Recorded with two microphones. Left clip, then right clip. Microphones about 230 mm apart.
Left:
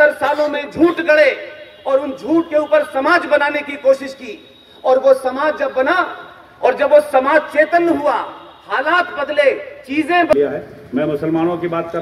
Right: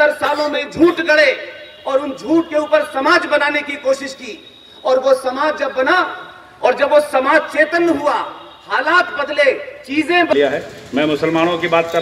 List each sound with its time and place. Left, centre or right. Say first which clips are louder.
0.0 s a sound: left 1 dB; right
0.7 s a man's voice: even; right
3.9 s a man's voice: left 2 dB; centre
5.2 s a man's voice: even; right
10.4 s speech: right 2 dB; left